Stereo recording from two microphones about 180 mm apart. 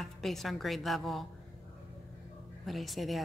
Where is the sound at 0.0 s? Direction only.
Centre (ahead or behind).